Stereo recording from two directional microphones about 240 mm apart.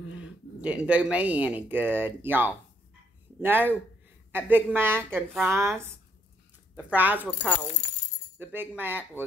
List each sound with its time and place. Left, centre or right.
0.2 s a woman's voice: centre
6.9 s a woman's voice: centre
8.4 s a woman's voice: centre